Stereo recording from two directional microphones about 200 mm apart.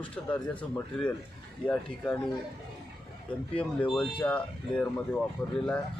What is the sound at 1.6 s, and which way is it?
Speech, 5° left (ahead or behind).